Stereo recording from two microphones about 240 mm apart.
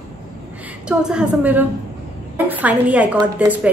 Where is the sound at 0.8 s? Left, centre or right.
Centre.